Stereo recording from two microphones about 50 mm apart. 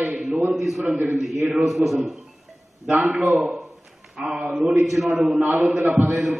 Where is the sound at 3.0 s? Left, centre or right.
Right.